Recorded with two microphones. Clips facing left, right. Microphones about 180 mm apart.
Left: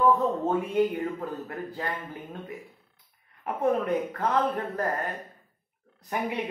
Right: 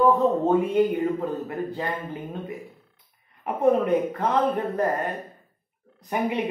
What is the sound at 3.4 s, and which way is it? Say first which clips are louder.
A woman's voice: right 5 dB; 15° right (ahead or behind).